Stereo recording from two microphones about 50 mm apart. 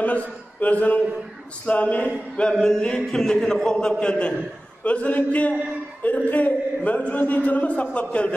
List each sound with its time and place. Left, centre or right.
0.0 s a man's voice: left
2.3 s a man's voice: centre